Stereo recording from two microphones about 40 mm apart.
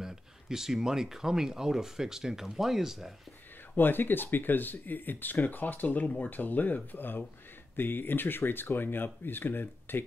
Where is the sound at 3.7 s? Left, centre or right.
Left.